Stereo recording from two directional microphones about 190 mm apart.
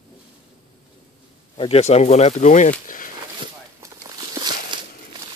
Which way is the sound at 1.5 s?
30° left (ahead or behind).